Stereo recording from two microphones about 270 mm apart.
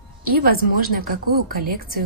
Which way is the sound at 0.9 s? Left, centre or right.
Right.